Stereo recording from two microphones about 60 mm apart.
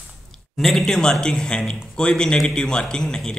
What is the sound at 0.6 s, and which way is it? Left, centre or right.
A man's voice, centre.